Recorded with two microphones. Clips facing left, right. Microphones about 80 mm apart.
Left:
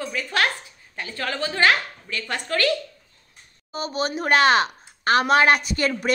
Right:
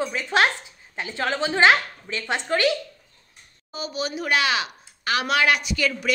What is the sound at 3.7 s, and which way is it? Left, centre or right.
Speech, left.